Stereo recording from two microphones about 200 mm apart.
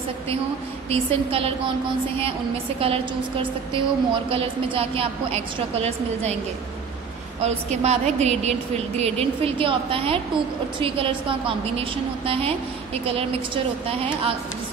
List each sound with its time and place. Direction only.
0.8 s a woman's voice: 30° right (ahead or behind)
7.4 s a woman's voice: 35° right (ahead or behind)